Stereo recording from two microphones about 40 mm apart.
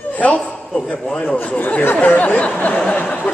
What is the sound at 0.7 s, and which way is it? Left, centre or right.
Speech, left.